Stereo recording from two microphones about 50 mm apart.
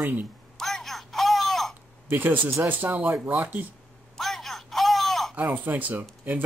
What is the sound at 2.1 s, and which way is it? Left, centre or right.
Speech, right.